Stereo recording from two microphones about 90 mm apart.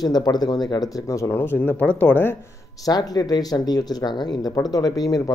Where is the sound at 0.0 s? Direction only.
50° left (ahead or behind); by 2.3 s 20° left (ahead or behind).